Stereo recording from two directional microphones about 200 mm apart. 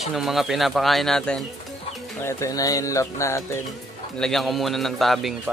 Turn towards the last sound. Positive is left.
turn(degrees=0)  # may be behind; listen again after turning